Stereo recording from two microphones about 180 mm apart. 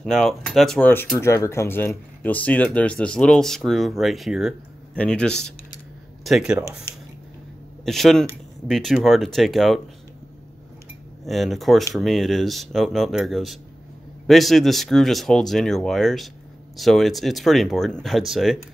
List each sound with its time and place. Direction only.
0.0 s speech: centre (ahead or behind)
7.8 s speech: centre (ahead or behind)
11.2 s speech: centre (ahead or behind)